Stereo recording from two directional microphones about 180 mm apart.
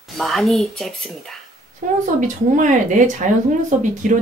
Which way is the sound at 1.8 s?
45° right (ahead or behind).